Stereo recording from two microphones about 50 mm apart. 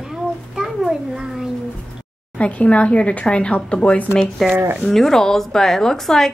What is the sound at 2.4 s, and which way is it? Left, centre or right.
Speech, left.